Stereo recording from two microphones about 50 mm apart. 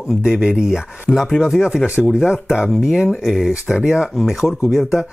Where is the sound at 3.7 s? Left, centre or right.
Centre.